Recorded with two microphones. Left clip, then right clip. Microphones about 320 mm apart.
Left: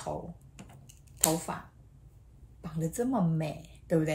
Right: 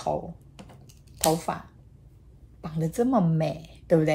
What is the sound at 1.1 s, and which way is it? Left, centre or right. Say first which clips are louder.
Speech: right 6 dB; right.